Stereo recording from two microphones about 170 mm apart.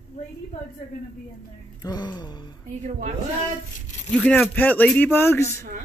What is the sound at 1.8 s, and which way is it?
Music, 25° left (ahead or behind).